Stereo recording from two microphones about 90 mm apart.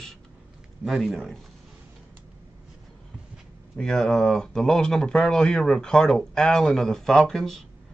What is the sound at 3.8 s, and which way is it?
Speech, 5° left (ahead or behind).